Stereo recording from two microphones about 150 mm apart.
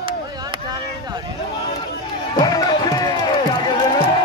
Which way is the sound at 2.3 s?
25° left (ahead or behind).